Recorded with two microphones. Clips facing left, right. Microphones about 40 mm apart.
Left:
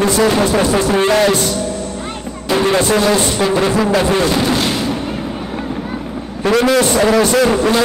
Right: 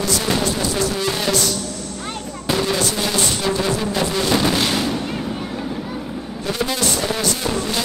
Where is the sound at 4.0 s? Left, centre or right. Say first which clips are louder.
Left 7 dB; left.